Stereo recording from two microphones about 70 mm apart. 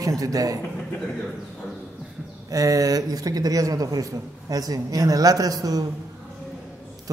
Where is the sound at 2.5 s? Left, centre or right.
Right.